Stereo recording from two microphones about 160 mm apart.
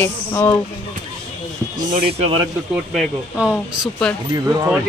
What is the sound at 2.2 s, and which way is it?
Speech, 35° right (ahead or behind).